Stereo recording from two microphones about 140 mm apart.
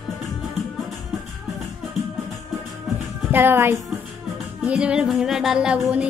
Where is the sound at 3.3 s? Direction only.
15° right (ahead or behind).